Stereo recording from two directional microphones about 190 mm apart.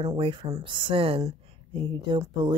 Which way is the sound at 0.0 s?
25° right (ahead or behind).